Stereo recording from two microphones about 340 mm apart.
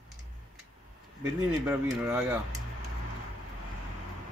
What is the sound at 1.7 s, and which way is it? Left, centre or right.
Speech, centre.